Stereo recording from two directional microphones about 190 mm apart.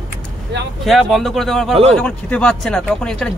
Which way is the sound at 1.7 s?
30° right (ahead or behind).